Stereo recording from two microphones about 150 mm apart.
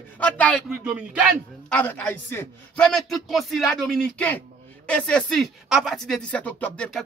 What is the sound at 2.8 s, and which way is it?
Speech, centre (ahead or behind).